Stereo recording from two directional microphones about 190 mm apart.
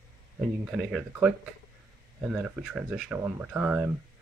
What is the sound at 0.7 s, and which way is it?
Speech, 5° right (ahead or behind).